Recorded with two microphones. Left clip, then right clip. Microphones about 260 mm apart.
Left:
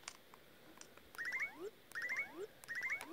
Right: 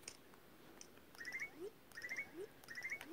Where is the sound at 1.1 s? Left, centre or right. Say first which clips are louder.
Left 6 dB; left.